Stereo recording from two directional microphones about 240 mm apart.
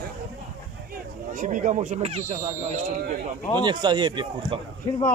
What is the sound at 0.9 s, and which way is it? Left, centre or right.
Speech, right.